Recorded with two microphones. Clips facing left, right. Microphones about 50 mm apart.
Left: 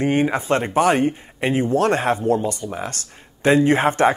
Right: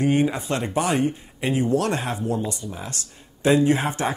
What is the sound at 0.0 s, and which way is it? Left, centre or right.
Speech, left.